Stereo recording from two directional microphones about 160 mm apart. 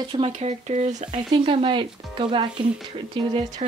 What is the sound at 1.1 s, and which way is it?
Speech, 30° right (ahead or behind).